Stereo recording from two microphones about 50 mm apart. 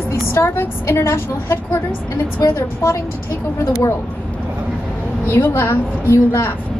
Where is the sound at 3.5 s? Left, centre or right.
Left.